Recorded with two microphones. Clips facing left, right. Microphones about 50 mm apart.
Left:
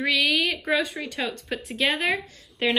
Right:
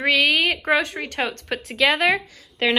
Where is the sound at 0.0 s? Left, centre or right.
Right.